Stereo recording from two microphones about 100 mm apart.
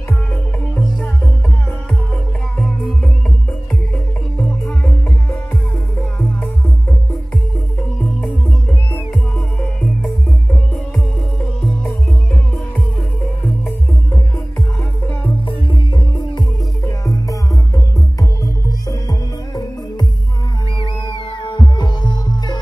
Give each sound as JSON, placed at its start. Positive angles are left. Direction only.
{"t": 8.9, "sound": "music", "side_deg": 10}
{"t": 15.4, "sound": "music", "side_deg": 50}
{"t": 16.8, "sound": "music", "side_deg": 35}
{"t": 18.4, "sound": "music", "side_deg": 40}
{"t": 20.8, "sound": "music", "side_deg": 50}